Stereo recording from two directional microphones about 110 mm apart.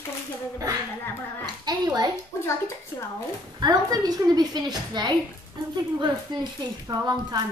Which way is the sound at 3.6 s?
35° right (ahead or behind).